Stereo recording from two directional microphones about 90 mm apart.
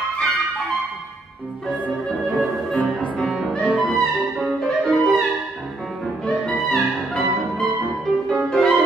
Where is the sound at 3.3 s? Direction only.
5° right (ahead or behind).